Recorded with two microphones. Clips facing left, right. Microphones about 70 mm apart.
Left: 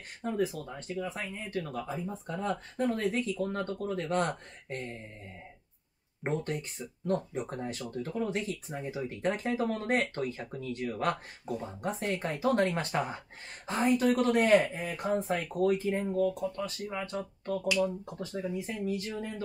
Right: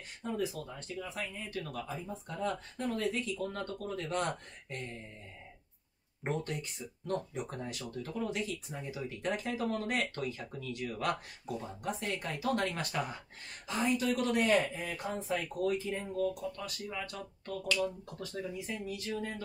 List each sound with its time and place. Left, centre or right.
0.2 s speech: left
6.2 s speech: left
13.7 s speech: left
15.1 s speech: left